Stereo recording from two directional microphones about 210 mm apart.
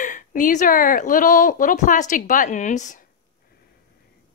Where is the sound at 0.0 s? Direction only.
40° left (ahead or behind).